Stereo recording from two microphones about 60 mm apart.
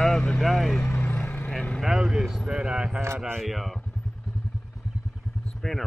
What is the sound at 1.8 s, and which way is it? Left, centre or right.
Speech, centre.